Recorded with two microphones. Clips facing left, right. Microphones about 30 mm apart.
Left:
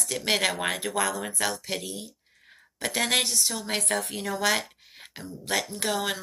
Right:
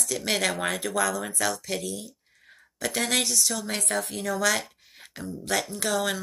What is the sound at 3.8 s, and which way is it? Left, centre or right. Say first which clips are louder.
Speech: even; left.